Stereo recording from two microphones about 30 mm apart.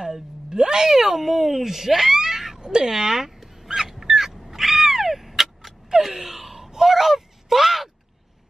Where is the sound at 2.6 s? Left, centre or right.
Right.